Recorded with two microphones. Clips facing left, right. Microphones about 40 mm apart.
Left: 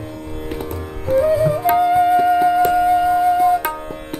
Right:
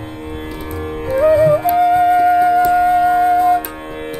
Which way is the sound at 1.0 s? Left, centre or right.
Right.